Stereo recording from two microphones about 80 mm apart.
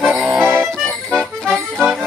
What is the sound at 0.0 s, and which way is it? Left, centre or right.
Music, centre.